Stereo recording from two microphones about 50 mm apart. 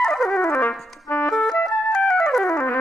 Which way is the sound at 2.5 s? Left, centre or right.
Left.